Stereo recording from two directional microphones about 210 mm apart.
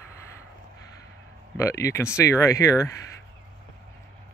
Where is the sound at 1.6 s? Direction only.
15° left (ahead or behind).